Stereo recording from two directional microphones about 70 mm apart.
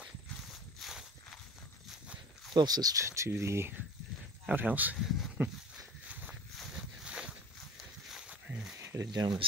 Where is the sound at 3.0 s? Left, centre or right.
Right.